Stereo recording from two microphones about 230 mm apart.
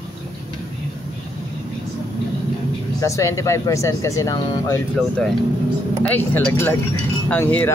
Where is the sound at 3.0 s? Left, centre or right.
Centre.